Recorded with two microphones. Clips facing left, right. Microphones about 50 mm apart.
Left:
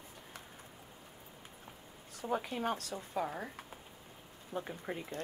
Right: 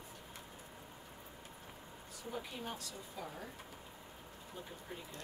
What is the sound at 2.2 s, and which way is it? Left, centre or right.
Speech, left.